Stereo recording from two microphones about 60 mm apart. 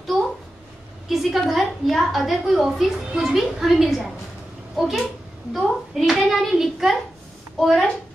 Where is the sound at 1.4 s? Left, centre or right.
Centre.